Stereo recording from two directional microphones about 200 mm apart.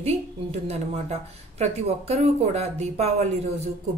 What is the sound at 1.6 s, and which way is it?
Speech, 30° right (ahead or behind).